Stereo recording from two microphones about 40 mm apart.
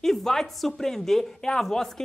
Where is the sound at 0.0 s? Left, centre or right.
Centre.